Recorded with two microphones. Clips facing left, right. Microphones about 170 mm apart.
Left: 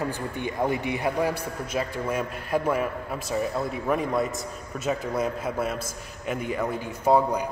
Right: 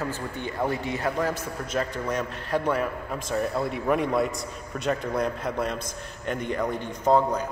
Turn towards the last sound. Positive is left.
turn(degrees=10)  # may be behind; listen again after turning